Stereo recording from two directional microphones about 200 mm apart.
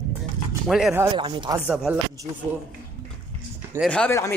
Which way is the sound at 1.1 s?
25° right (ahead or behind).